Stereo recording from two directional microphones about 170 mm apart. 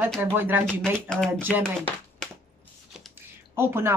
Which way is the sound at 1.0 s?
5° left (ahead or behind).